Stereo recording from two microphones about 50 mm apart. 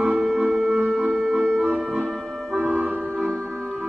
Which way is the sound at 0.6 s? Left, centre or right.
Centre.